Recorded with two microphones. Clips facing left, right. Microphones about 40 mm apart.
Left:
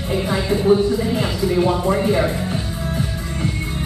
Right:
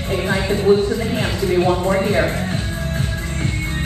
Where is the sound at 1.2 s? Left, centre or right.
Right.